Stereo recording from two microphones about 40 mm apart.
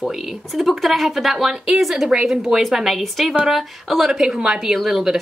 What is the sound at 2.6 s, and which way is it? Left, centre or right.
A woman's voice, centre.